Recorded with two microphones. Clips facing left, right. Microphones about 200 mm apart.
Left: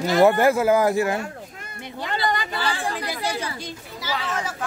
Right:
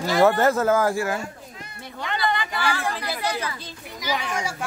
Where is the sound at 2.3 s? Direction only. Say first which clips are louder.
Even; 45° left (ahead or behind).